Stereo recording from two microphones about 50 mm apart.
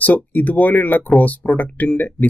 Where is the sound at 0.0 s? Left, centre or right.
Left.